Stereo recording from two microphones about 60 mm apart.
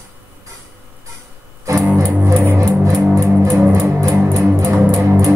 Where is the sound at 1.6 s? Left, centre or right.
Right.